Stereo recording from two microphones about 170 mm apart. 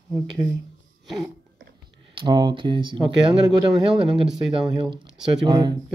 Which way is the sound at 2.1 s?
30° right (ahead or behind).